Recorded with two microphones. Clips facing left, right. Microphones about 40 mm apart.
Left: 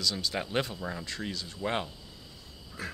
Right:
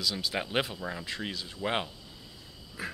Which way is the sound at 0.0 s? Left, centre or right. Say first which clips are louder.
Even; centre.